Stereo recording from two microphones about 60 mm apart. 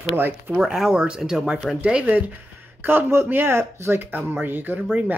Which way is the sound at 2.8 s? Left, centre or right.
Right.